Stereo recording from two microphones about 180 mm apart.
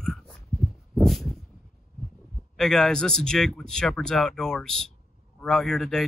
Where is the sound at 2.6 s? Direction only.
Centre (ahead or behind).